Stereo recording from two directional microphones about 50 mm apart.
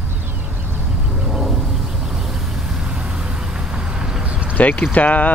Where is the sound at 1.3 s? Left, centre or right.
Centre.